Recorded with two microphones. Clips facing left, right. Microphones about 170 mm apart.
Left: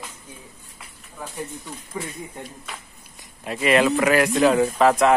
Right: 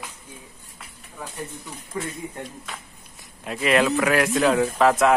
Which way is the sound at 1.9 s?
15° left (ahead or behind).